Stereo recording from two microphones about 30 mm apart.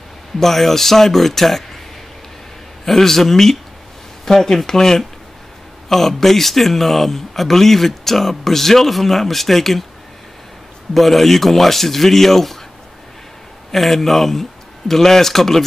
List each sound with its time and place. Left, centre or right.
0.4 s speech: centre
2.8 s speech: centre
11.0 s speech: centre
13.7 s speech: centre